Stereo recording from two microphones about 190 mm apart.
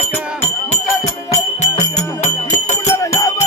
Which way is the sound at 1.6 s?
40° left (ahead or behind).